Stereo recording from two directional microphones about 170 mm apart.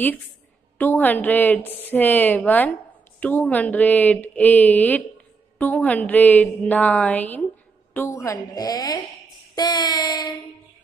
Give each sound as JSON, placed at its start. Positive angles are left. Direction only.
{"t": 0.7, "sound": "a woman's voice", "side_deg": 10}